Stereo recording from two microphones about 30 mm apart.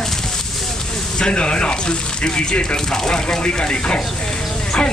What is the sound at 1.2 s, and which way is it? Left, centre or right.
Speech, left.